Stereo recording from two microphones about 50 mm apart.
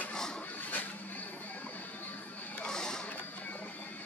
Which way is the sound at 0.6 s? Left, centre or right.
Left.